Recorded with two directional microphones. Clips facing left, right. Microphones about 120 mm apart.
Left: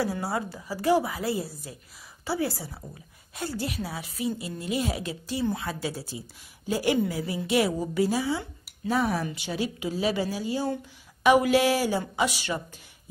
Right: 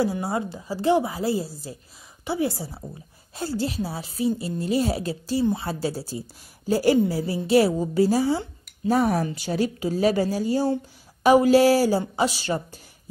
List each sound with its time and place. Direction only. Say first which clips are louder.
0.0 s a woman's voice: right 4 dB; 25° right (ahead or behind)